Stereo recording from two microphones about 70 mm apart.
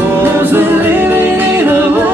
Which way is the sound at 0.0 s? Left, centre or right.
Right.